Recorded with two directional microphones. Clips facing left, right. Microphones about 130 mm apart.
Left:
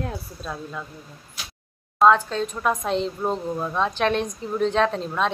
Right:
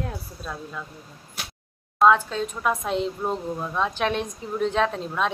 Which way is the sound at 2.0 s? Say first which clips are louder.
Left 1 dB; 10° right (ahead or behind).